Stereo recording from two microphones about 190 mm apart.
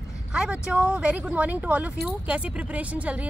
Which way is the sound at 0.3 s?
5° right (ahead or behind).